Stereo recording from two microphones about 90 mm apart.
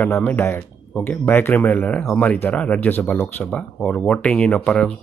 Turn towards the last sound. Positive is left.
turn(degrees=10)  # may be behind; listen again after turning